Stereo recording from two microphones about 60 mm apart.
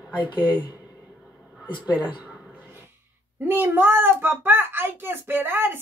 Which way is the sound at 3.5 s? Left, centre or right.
Right.